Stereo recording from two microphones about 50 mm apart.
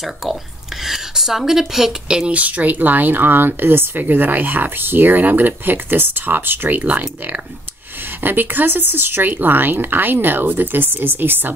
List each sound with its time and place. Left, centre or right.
0.0 s speech: centre
2.3 s speech: right
4.0 s speech: right